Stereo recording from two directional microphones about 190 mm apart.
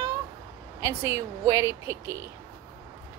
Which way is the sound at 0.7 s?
15° right (ahead or behind).